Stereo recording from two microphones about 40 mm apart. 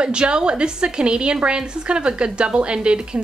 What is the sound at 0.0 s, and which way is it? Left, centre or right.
A woman's voice, right.